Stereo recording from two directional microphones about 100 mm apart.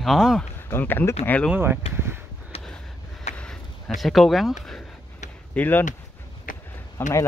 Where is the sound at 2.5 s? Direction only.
80° left.